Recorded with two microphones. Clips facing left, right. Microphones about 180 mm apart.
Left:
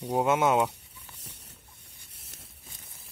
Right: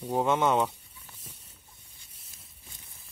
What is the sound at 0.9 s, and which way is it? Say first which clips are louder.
Patter: left 1 dB; 70° left (ahead or behind).